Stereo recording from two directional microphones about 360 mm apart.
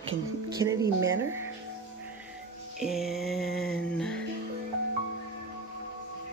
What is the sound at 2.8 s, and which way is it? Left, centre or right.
Music, centre.